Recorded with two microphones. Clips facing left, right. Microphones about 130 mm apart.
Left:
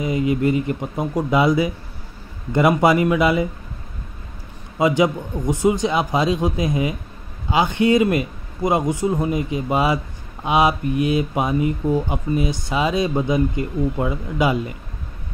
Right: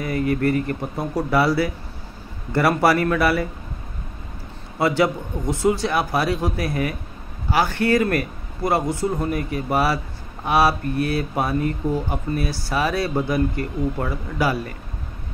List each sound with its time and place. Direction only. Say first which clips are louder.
0.0 s speech: left 2 dB; 15° left (ahead or behind)
4.7 s speech: left 2 dB; 15° left (ahead or behind)